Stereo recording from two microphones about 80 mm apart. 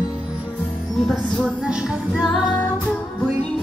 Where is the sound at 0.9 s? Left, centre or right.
Centre.